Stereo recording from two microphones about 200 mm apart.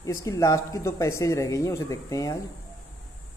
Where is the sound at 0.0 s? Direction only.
15° left (ahead or behind).